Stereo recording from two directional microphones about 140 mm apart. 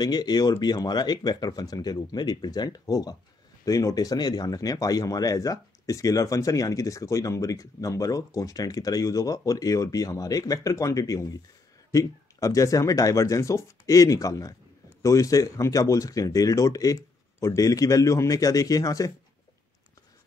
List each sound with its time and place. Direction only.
0.0 s speech: 30° left (ahead or behind)